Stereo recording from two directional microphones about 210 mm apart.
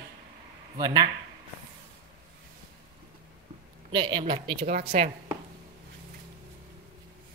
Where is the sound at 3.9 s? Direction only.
20° right (ahead or behind).